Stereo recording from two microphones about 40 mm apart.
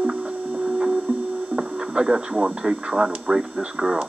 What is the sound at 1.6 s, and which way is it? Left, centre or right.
Speech, right.